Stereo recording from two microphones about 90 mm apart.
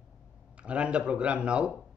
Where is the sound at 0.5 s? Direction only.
15° right (ahead or behind).